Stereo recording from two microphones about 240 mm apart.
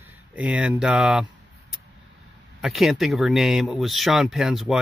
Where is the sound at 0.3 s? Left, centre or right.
Centre.